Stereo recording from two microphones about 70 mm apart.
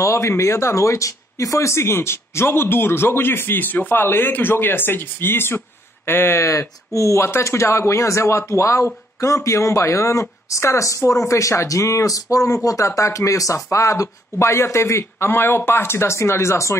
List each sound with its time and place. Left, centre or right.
0.0 s speech: left